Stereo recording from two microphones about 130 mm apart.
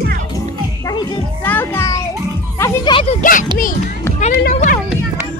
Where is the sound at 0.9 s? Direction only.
35° left (ahead or behind).